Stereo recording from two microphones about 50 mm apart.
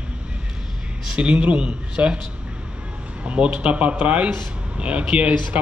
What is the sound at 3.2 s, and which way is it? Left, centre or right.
A man's voice, right.